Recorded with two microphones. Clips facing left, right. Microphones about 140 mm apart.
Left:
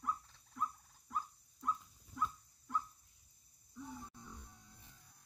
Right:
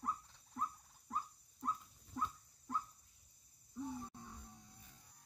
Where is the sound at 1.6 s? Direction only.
35° right (ahead or behind).